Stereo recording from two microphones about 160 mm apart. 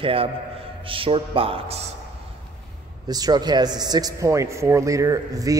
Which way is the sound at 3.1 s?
25° right (ahead or behind).